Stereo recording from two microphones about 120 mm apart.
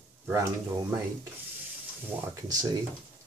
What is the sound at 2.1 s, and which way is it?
Speech, 15° right (ahead or behind).